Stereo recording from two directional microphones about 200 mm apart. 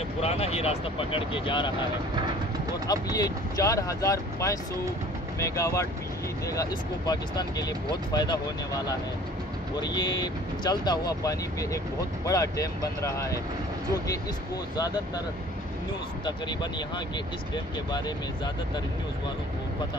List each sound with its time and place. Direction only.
0.2 s speech: 30° left (ahead or behind)
2.9 s speech: 20° left (ahead or behind)